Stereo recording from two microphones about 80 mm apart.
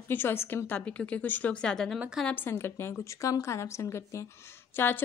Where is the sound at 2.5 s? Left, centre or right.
Left.